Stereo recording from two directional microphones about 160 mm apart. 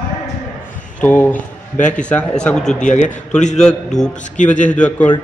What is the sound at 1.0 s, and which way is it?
Speech, 10° left (ahead or behind).